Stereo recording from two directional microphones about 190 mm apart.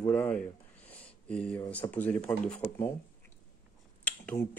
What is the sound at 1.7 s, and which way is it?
Speech, 10° left (ahead or behind).